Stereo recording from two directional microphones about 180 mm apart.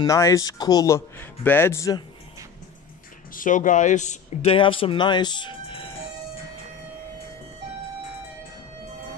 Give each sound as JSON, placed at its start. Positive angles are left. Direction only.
{"t": 0.0, "sound": "a man's voice", "side_deg": 20}
{"t": 3.3, "sound": "speech", "side_deg": 45}